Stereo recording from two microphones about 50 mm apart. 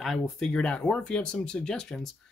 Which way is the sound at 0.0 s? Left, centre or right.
Centre.